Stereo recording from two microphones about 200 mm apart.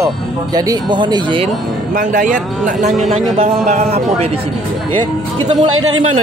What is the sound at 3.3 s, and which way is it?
Speech, 35° right (ahead or behind).